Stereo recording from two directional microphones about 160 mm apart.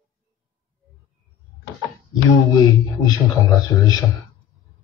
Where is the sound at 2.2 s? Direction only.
20° left (ahead or behind).